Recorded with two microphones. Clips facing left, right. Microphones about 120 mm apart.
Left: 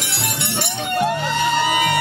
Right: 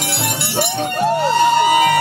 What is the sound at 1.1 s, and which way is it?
Music, 35° right (ahead or behind).